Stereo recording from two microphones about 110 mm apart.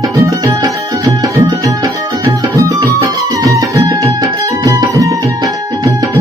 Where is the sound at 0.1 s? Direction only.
35° right (ahead or behind).